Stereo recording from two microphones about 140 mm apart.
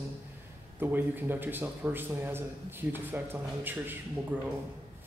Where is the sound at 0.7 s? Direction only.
15° right (ahead or behind).